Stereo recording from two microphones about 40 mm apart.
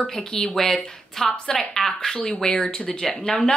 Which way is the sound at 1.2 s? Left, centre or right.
Left.